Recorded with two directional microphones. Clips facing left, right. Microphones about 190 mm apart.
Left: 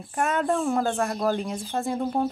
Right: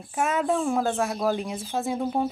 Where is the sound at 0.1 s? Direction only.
Centre (ahead or behind).